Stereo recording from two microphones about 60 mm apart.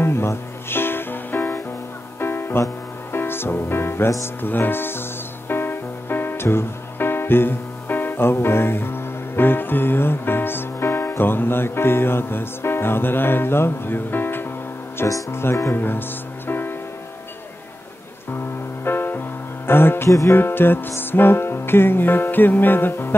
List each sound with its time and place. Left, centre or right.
0.0 s music: left
3.1 s speech: left
4.2 s music: left
18.9 s music: left